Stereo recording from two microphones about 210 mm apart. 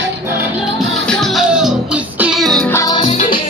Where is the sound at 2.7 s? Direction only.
20° left (ahead or behind).